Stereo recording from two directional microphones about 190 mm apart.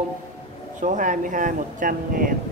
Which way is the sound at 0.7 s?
40° right (ahead or behind).